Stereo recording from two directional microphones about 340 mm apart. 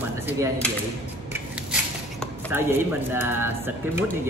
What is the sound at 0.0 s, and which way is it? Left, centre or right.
Typewriter, centre.